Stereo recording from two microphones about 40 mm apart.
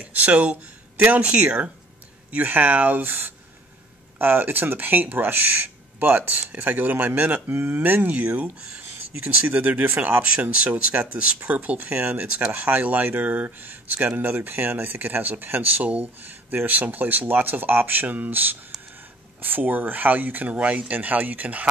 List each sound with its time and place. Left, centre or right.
0.0 s speech: right
2.4 s speech: right
8.1 s speech: right
8.5 s speech: right
9.4 s speech: right
10.2 s speech: right